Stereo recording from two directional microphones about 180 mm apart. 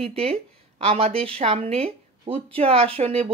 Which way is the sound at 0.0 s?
35° right (ahead or behind).